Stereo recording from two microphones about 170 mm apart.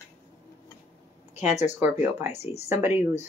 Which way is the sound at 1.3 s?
40° left (ahead or behind).